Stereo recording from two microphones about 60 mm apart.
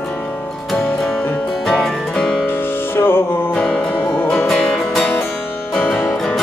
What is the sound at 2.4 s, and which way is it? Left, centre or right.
Music, left.